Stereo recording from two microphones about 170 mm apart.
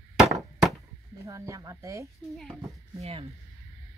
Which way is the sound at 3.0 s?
35° right (ahead or behind).